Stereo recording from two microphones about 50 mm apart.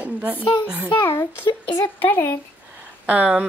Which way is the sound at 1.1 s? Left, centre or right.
Left.